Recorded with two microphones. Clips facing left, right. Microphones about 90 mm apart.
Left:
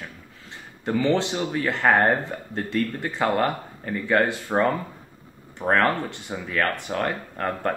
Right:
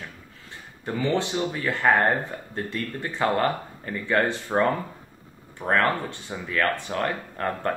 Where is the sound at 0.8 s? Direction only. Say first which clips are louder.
Left 3 dB; 20° left (ahead or behind).